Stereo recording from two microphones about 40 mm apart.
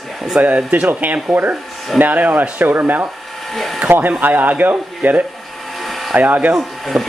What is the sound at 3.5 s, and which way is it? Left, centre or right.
Speech, centre.